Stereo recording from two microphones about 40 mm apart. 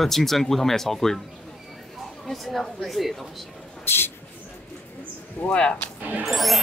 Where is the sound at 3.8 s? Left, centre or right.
Left.